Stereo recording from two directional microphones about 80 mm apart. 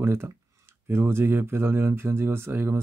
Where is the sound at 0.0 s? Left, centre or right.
Right.